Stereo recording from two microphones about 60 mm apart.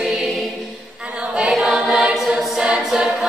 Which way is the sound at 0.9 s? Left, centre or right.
Centre.